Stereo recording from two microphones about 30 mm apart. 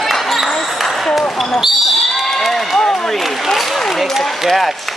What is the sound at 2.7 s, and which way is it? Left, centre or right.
Speech, centre.